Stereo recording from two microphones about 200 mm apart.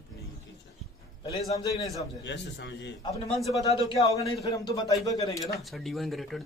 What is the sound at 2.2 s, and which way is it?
Speech, 60° left (ahead or behind).